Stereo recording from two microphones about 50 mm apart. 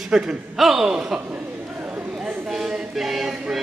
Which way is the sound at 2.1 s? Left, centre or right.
Centre.